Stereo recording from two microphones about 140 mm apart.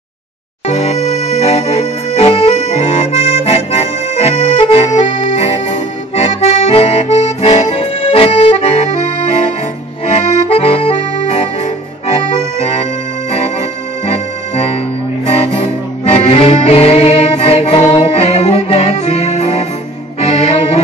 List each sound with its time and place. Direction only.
0.7 s music: 50° left (ahead or behind)
10.0 s accordion: 45° left (ahead or behind)
15.2 s music: 45° left (ahead or behind)